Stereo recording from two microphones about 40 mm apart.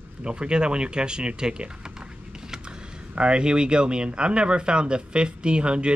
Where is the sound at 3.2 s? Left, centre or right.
Right.